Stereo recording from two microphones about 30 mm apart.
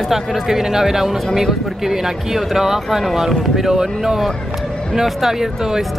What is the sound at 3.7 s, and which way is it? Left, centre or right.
Speech, centre.